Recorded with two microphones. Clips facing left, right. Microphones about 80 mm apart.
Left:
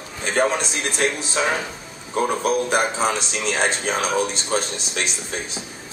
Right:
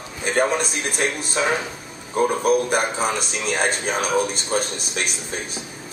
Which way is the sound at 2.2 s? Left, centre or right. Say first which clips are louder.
Right 2 dB; centre.